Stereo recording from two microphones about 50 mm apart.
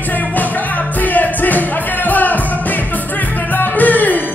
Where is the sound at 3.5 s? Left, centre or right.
Left.